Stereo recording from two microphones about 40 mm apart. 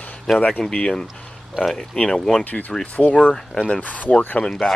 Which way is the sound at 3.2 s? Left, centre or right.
Left.